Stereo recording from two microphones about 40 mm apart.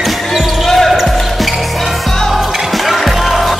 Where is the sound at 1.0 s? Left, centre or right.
Centre.